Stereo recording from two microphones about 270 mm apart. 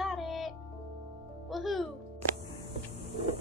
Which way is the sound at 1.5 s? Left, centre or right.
Centre.